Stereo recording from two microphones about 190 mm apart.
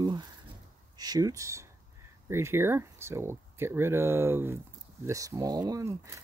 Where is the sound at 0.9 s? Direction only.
20° right (ahead or behind).